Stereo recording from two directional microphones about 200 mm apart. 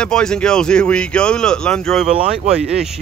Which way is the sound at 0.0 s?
5° left (ahead or behind).